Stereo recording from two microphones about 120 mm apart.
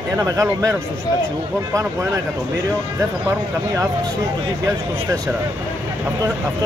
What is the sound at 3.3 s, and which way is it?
Speech, 25° right (ahead or behind).